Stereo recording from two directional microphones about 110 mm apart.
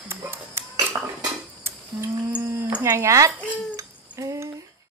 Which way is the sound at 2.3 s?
15° right (ahead or behind).